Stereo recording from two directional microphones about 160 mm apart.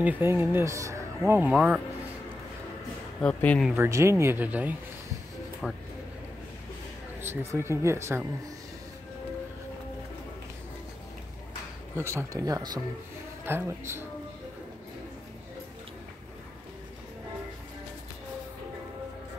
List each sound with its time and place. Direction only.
0.0 s speech: 15° right (ahead or behind)
3.2 s speech: 5° left (ahead or behind)
3.7 s speech: 15° right (ahead or behind)
5.6 s speech: centre (ahead or behind)
7.2 s speech: 15° right (ahead or behind)
11.9 s speech: 15° right (ahead or behind)